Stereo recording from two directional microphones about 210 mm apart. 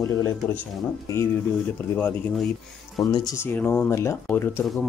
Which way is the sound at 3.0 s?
20° left (ahead or behind).